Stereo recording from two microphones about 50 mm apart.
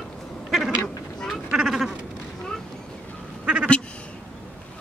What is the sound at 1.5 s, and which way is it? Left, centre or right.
Sheep, centre.